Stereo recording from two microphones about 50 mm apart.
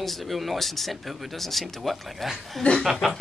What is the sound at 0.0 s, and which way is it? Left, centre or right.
A man's voice, centre.